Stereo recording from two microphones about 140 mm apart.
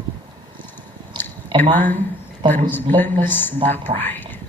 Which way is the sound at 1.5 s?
35° right (ahead or behind).